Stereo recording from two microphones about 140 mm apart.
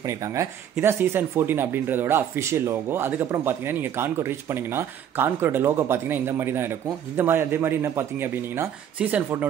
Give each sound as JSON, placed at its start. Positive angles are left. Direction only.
{"t": 0.0, "sound": "speech", "side_deg": -20}